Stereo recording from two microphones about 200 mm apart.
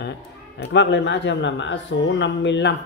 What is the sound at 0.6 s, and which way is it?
Speech, 60° left (ahead or behind).